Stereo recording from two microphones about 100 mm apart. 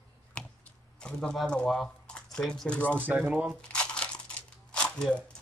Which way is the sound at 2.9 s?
20° right (ahead or behind).